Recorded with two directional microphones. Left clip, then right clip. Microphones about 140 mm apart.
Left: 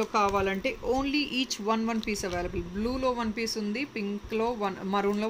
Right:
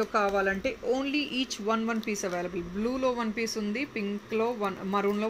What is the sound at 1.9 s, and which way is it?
Speech, 15° left (ahead or behind).